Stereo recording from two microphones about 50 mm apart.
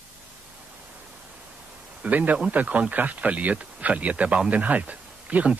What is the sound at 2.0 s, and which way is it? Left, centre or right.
Speech, right.